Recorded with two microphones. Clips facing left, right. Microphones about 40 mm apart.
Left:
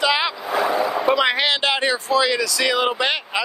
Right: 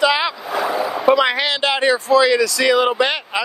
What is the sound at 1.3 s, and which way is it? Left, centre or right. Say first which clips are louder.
Speech: even; left.